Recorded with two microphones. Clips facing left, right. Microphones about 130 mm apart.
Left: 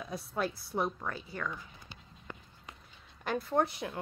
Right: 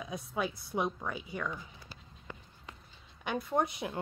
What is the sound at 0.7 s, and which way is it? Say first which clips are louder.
Speech: right 1 dB; 10° right (ahead or behind).